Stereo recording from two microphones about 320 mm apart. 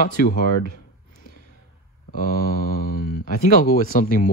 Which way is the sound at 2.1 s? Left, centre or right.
Left.